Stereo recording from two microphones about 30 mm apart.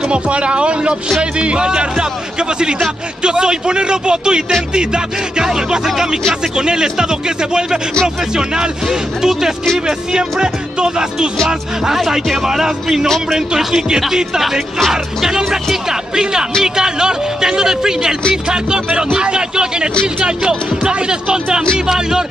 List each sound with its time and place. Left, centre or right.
0.1 s speech: right
3.3 s speech: right
8.8 s music: centre
10.4 s speech: right
11.4 s music: centre
14.9 s speech: centre
21.8 s music: centre